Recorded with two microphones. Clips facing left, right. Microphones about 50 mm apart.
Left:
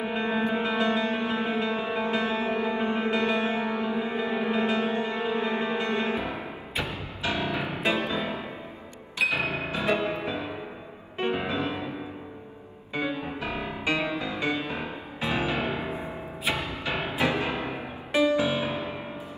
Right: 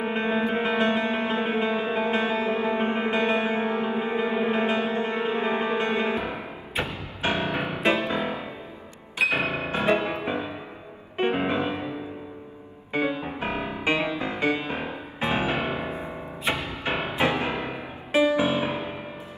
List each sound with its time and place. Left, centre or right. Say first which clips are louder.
0.0 s music: right 2 dB; right
12.9 s music: right 3 dB; right
18.1 s music: right 2 dB; right